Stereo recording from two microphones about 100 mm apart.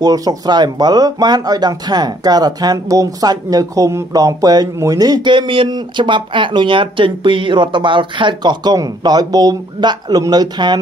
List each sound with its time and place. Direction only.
0.0 s speech: 40° right (ahead or behind)